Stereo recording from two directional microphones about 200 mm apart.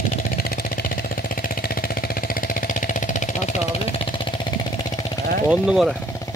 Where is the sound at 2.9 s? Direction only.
40° left (ahead or behind).